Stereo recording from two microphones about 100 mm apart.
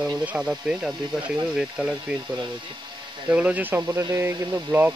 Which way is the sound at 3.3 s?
15° right (ahead or behind).